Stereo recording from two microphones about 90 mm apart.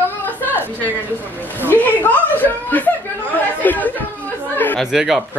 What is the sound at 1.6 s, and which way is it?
Speech, 20° left (ahead or behind).